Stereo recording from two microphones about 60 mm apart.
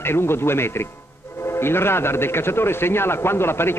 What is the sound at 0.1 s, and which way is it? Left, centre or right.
Speech, left.